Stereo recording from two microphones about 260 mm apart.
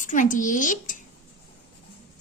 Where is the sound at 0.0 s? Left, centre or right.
Left.